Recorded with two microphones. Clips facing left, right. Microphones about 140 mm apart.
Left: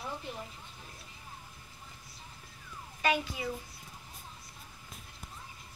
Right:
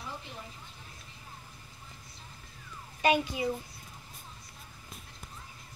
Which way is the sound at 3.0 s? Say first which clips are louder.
Right 4 dB; 20° right (ahead or behind).